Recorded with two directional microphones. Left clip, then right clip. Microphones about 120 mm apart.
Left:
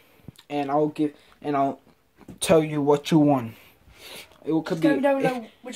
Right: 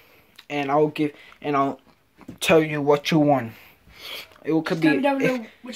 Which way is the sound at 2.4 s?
30° left (ahead or behind).